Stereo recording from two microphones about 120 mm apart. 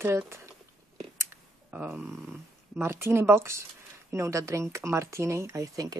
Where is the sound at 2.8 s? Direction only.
20° right (ahead or behind).